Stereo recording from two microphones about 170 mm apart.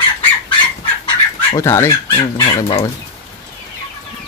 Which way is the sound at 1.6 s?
15° left (ahead or behind).